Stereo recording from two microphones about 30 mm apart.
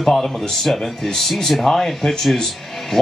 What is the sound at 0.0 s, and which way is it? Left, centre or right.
A man's voice, centre.